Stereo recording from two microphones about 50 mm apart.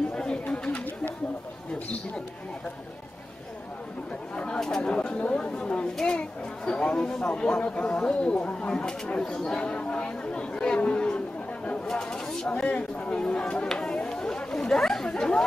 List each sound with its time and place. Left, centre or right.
0.1 s a sound: centre
4.6 s chatter: centre
4.9 s chatter: left
5.9 s speech: centre
7.6 s chatter: left
11.9 s chatter: centre